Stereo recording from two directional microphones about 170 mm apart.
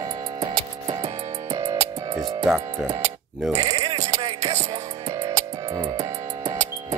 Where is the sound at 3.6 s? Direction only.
20° right (ahead or behind).